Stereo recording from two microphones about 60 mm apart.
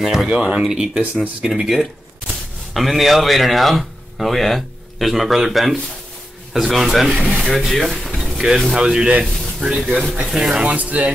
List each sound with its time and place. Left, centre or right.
0.0 s speech: centre
9.2 s speech: centre
9.6 s speech: centre
10.8 s speech: right